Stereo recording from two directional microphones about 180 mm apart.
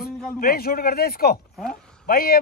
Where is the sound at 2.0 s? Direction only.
55° left (ahead or behind).